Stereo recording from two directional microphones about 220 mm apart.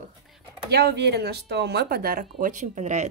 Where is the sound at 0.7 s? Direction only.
45° right (ahead or behind).